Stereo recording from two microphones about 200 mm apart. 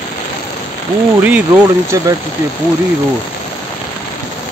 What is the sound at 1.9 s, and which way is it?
Speech, 15° right (ahead or behind).